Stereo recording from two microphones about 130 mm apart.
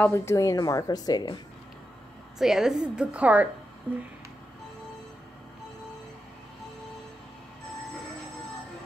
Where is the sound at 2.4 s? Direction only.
5° right (ahead or behind).